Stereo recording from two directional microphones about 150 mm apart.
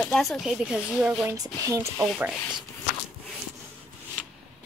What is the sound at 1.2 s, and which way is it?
Speech, 20° right (ahead or behind).